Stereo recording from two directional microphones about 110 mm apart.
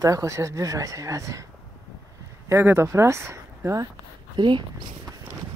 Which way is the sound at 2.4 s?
25° right (ahead or behind).